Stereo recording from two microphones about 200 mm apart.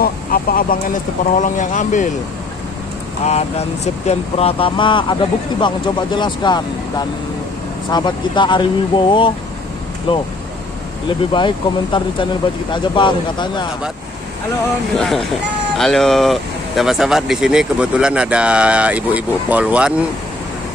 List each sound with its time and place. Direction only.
0.0 s speech: 45° left (ahead or behind)
3.3 s speech: 30° left (ahead or behind)
7.9 s speech: 20° left (ahead or behind)
15.8 s speech: centre (ahead or behind)